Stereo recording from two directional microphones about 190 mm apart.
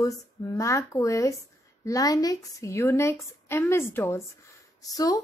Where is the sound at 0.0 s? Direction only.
15° left (ahead or behind).